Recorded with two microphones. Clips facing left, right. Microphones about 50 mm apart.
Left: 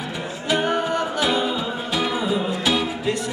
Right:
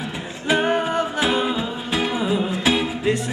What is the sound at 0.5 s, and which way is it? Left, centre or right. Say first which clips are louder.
Music: right 2 dB; right.